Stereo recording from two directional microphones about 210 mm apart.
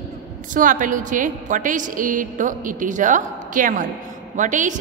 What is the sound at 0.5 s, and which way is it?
A woman's voice, 40° right (ahead or behind).